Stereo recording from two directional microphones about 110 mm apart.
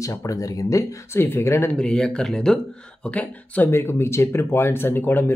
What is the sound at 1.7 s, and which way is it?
Speech, 10° left (ahead or behind).